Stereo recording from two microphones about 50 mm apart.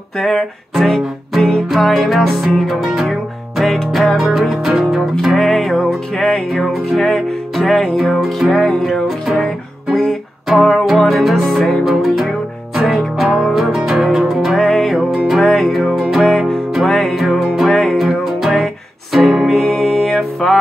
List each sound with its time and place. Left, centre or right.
0.2 s music: centre
6.1 s music: centre
6.5 s music: centre
17.7 s music: centre
18.0 s music: centre
19.6 s music: centre